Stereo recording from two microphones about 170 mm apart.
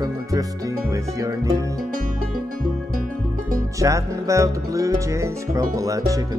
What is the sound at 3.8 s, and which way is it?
Speech, 20° right (ahead or behind).